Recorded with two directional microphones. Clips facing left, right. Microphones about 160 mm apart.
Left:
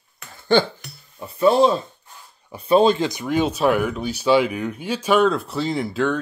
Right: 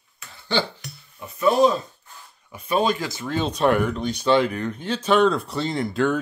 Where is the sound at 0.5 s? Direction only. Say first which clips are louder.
Left 7 dB; 50° left (ahead or behind).